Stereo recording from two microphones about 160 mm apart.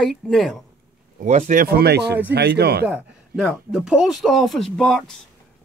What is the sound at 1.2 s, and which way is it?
Speech, 50° right (ahead or behind).